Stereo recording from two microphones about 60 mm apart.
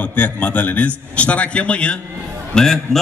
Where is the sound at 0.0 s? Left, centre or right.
Left.